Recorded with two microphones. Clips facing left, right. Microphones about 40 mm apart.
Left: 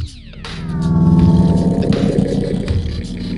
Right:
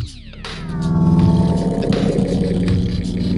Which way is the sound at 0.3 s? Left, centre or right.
Centre.